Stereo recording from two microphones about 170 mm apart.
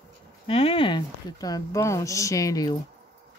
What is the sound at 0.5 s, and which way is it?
Speech, 35° left (ahead or behind).